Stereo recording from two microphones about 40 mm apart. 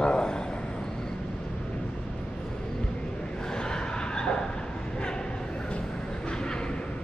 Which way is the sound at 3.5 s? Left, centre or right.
Centre.